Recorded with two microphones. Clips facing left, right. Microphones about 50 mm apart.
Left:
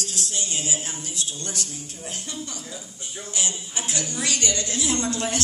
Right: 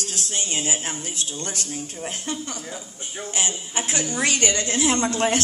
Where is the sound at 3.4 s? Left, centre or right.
Right.